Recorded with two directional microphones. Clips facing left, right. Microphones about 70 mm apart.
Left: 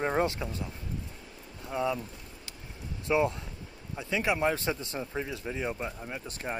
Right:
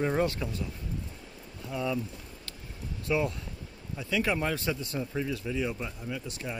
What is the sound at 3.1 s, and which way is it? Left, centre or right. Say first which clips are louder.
A man's voice: left 2 dB; left.